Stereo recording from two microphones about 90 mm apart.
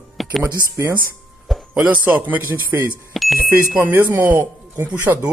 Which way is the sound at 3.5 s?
25° right (ahead or behind).